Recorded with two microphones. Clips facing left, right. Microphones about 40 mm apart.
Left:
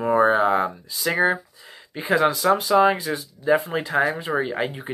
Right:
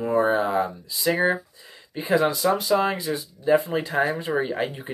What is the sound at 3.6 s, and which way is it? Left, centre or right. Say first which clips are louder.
Speech: left 1 dB; left.